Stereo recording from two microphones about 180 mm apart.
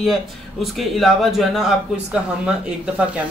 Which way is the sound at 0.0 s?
Centre (ahead or behind).